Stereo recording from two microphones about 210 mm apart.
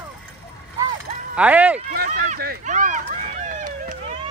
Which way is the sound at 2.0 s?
35° right (ahead or behind).